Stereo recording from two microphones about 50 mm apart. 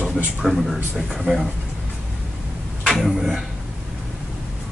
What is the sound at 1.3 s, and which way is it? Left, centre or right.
Speech, centre.